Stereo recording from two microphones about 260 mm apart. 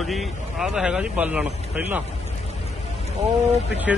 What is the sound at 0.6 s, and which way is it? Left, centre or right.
Speech, centre.